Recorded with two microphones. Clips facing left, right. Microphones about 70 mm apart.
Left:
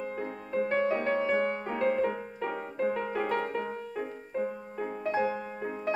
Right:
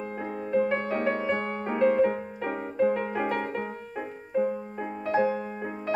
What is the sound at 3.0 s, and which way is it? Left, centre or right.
Music, right.